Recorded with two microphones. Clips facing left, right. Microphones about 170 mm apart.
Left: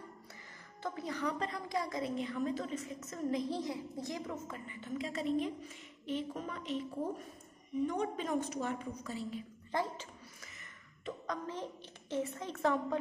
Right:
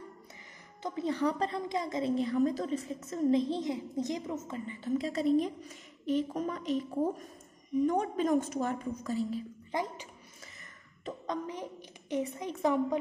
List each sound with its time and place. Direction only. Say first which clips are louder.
0.8 s a woman's voice: right 7 dB; 25° right (ahead or behind); by 9.4 s 40° right (ahead or behind)
9.7 s speech: right 1 dB; 15° right (ahead or behind)
11.2 s a woman's voice: right 4 dB; 15° right (ahead or behind)